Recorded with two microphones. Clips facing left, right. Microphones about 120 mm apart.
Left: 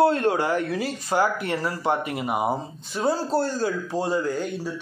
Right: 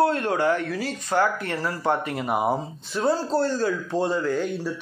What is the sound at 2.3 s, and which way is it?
Speech, centre (ahead or behind).